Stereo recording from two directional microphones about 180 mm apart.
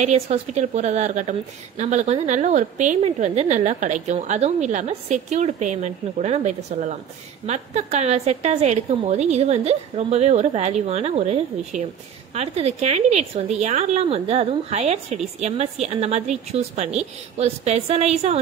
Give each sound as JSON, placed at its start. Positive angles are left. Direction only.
{"t": 0.0, "sound": "a woman's voice", "side_deg": -40}